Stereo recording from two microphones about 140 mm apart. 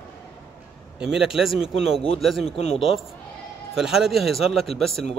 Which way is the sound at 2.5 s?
50° left (ahead or behind).